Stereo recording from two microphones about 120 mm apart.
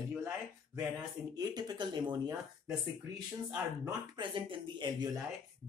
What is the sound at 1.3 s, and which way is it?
Speech, 35° right (ahead or behind).